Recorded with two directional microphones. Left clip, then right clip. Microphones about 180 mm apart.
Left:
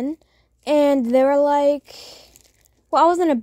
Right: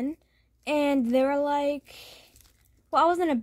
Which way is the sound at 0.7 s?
30° left (ahead or behind).